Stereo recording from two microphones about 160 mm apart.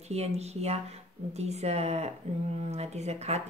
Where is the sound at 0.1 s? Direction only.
40° right (ahead or behind).